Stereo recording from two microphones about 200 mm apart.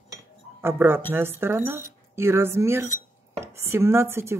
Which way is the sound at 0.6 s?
10° right (ahead or behind).